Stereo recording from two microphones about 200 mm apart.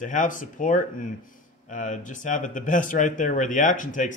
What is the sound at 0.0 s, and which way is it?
Speech, 40° left (ahead or behind).